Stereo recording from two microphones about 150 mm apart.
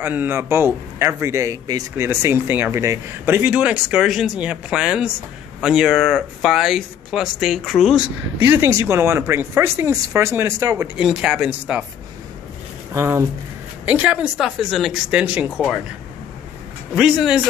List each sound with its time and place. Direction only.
0.0 s speech: 15° right (ahead or behind)
11.0 s speech: 5° right (ahead or behind)
12.9 s speech: 15° right (ahead or behind)
16.9 s speech: 5° right (ahead or behind)